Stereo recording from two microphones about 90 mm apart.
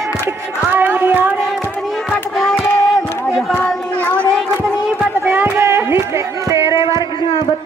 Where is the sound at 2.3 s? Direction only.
5° left (ahead or behind).